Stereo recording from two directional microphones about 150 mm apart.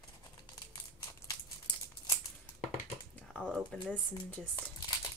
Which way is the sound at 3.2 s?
5° left (ahead or behind).